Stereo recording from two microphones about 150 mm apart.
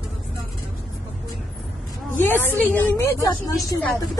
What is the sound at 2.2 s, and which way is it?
Speech, 15° left (ahead or behind).